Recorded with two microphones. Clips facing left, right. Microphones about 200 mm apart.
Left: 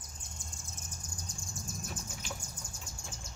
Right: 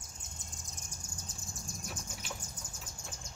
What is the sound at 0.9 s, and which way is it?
Bird, 10° right (ahead or behind).